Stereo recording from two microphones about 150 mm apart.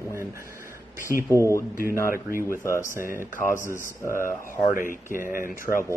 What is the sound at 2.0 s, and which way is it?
Speech, 70° left (ahead or behind).